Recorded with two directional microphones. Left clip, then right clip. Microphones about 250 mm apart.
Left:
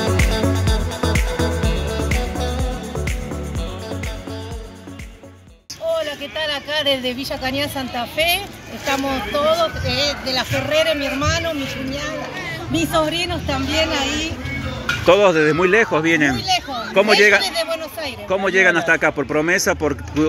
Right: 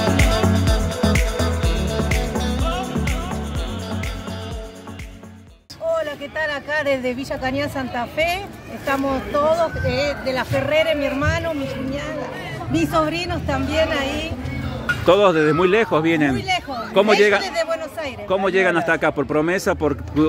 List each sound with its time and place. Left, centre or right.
0.2 s music: centre
5.9 s speech: centre
12.9 s a woman's voice: centre
13.7 s speech: centre
15.0 s speech: centre